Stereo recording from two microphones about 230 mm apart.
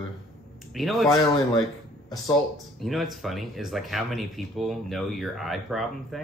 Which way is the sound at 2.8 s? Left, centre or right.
Centre.